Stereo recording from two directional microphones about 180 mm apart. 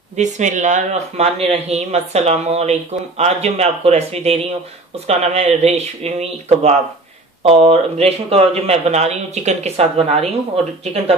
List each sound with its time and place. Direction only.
0.1 s speech: 40° right (ahead or behind)